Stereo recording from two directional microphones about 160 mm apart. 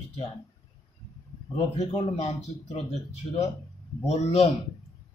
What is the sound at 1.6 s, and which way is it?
Speech, 40° left (ahead or behind).